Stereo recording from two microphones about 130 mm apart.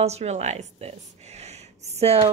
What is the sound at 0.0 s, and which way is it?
A woman's voice, 55° right (ahead or behind).